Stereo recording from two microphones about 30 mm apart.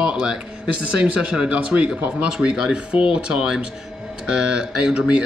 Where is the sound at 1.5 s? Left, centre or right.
Right.